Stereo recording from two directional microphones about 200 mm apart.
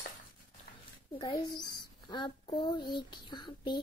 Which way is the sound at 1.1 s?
20° left (ahead or behind).